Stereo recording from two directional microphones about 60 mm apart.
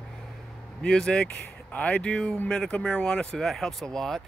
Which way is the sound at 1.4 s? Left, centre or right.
Left.